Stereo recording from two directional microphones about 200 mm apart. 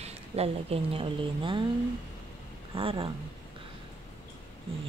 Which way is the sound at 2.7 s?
25° right (ahead or behind).